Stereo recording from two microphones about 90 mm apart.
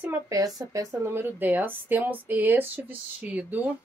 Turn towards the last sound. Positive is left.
turn(degrees=-15)  # may be behind; listen again after turning